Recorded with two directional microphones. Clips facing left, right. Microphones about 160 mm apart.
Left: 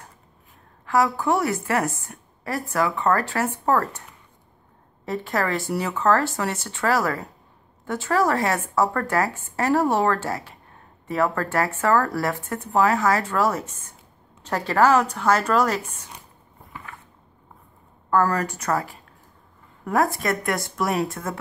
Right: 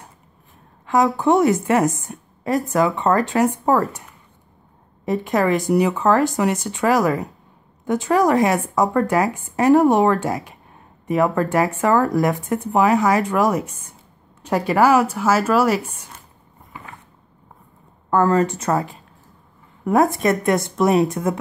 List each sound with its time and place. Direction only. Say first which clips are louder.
0.8 s a woman's voice: right 4 dB; 20° right (ahead or behind)
5.0 s speech: right 6 dB; 15° right (ahead or behind)
18.1 s a woman's voice: right 5 dB; 25° right (ahead or behind)